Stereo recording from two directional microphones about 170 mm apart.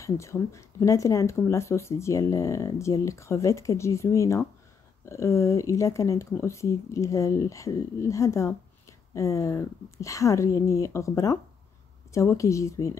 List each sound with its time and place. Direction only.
0.0 s speech: 15° left (ahead or behind)